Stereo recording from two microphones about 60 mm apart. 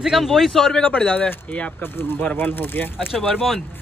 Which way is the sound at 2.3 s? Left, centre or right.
Left.